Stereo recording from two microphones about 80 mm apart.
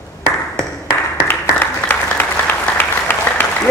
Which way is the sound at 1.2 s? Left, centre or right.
Left.